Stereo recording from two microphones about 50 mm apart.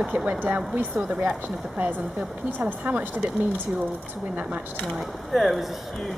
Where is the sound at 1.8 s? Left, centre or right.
Right.